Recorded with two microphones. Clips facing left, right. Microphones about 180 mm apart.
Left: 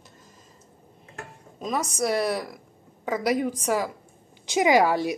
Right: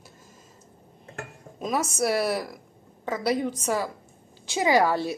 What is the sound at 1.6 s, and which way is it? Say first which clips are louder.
Speech: right 1 dB; 5° right (ahead or behind).